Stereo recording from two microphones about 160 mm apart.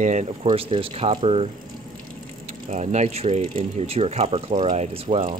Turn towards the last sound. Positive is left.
turn(degrees=-40)  # may be behind; listen again after turning